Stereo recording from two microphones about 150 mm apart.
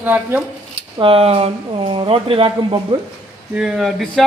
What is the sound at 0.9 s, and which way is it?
Speech, 35° right (ahead or behind).